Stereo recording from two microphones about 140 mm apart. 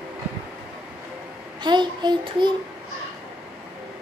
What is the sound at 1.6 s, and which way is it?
Speech, 30° right (ahead or behind).